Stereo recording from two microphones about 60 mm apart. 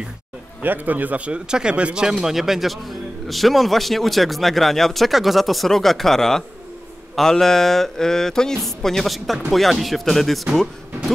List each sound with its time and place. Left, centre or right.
0.6 s speech: right; by 10.7 s centre